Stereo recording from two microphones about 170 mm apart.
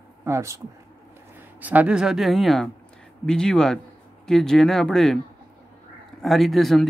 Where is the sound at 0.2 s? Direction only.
15° right (ahead or behind).